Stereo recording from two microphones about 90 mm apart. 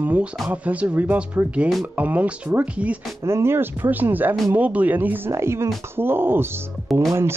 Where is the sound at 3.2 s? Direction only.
30° right (ahead or behind).